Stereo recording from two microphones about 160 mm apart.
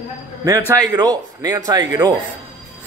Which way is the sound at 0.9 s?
25° right (ahead or behind).